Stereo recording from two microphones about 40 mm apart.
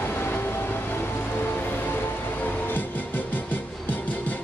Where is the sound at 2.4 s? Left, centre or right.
Left.